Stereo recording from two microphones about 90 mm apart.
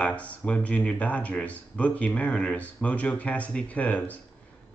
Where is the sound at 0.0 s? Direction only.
15° left (ahead or behind).